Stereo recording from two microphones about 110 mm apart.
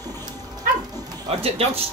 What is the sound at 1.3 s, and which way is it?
Speech, 65° right (ahead or behind).